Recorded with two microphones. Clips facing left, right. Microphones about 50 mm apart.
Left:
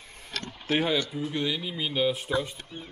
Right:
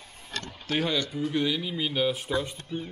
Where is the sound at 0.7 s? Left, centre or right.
Centre.